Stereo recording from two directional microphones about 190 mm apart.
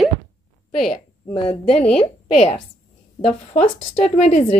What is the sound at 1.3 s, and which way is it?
Speech, 30° left (ahead or behind).